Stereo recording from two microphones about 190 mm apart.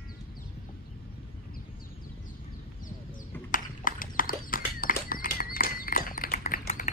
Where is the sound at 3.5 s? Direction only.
45° left (ahead or behind).